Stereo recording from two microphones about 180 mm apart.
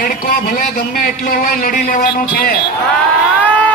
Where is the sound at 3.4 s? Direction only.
5° left (ahead or behind).